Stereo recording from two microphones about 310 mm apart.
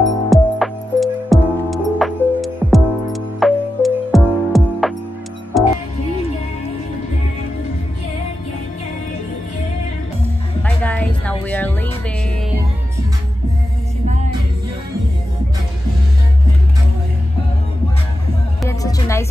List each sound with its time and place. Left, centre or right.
0.3 s music: centre
10.6 s music: centre
14.0 s music: right
18.6 s music: centre